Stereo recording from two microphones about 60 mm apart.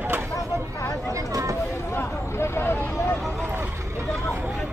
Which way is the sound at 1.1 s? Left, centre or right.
Right.